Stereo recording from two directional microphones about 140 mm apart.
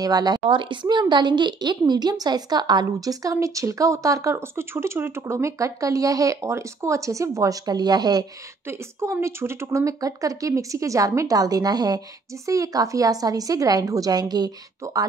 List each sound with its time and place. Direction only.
0.0 s a woman's voice: 30° right (ahead or behind)
8.6 s a woman's voice: 15° right (ahead or behind)